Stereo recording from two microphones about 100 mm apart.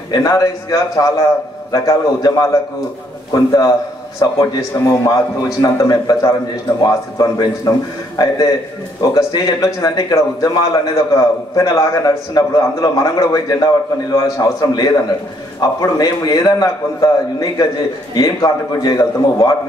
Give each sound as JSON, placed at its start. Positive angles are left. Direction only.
{"t": 0.1, "sound": "a man's voice", "side_deg": 35}
{"t": 9.0, "sound": "a man's voice", "side_deg": 40}